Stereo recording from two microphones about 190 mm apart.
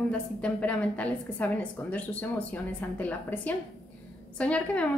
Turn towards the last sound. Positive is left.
turn(degrees=5)  # may be behind; listen again after turning